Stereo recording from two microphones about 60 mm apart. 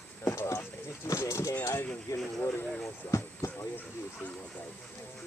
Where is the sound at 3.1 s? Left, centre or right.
Left.